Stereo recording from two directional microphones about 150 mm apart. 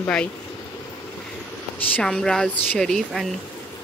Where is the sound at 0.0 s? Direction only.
5° left (ahead or behind).